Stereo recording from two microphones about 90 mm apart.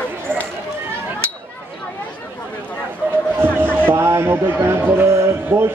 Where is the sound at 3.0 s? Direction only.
20° right (ahead or behind).